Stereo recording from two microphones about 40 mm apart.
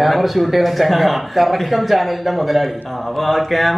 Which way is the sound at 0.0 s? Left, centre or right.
Centre.